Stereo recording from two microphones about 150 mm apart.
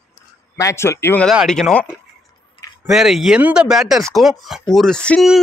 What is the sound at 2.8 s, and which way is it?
Speech, centre (ahead or behind).